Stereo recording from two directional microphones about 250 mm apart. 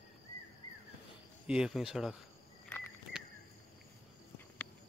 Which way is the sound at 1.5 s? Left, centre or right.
Centre.